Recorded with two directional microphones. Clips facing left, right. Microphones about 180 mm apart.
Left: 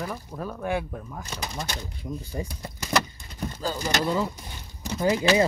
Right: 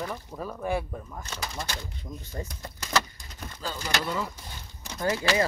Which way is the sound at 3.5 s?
40° left (ahead or behind).